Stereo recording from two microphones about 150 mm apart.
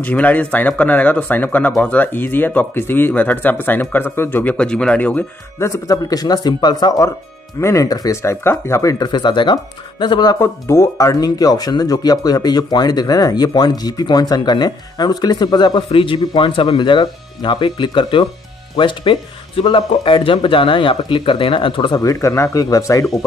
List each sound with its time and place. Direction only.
0.0 s speech: 10° left (ahead or behind); by 10.3 s 30° left (ahead or behind)
10.4 s speech: 20° left (ahead or behind)